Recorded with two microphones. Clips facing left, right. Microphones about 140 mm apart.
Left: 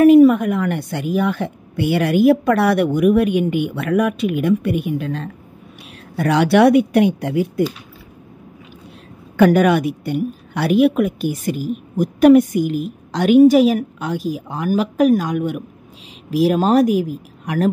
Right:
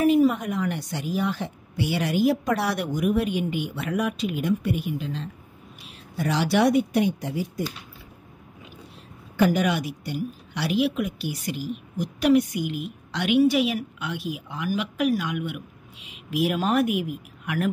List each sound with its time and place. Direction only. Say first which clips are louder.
0.0 s a woman's voice: left 10 dB; 65° left (ahead or behind)
9.4 s a woman's voice: left 9 dB; 60° left (ahead or behind); by 17.6 s 35° left (ahead or behind)